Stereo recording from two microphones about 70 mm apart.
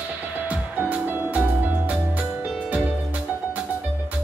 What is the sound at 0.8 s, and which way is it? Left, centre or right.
Music, right.